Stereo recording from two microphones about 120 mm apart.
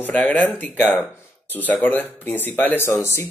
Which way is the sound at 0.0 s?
15° left (ahead or behind).